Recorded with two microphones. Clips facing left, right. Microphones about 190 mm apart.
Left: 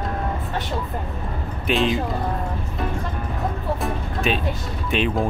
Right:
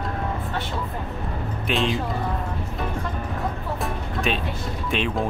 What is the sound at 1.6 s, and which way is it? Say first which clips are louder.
Speech: left 3 dB; centre (ahead or behind).